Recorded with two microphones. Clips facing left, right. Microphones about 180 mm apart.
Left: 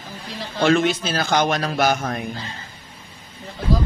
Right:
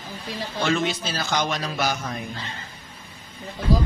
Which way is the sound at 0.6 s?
55° left (ahead or behind).